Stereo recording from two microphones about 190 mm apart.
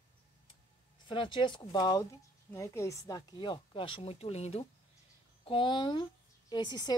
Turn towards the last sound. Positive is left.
turn(degrees=20)  # may be behind; listen again after turning